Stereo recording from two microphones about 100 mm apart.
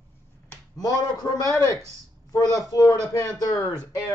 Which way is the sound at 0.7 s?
40° left (ahead or behind).